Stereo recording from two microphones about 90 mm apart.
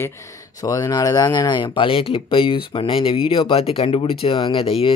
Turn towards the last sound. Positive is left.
turn(degrees=85)